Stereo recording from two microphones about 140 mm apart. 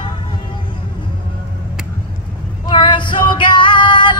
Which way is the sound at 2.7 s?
35° left (ahead or behind).